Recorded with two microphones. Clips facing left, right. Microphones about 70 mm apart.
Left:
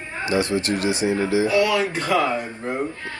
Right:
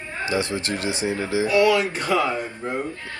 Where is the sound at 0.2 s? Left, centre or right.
Right.